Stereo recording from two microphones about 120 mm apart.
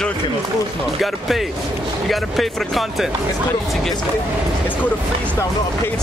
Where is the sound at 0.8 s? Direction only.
Centre (ahead or behind).